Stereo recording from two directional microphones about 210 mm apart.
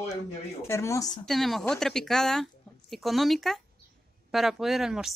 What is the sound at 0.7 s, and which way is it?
Speech, 15° left (ahead or behind).